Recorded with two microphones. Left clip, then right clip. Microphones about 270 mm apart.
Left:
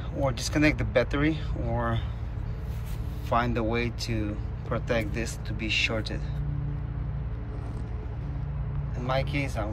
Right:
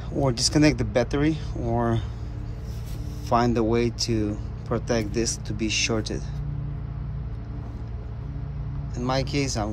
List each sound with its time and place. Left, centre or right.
0.2 s speech: centre
3.3 s speech: centre
9.0 s speech: centre